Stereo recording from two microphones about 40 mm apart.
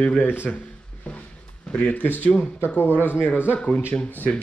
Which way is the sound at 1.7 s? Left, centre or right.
Left.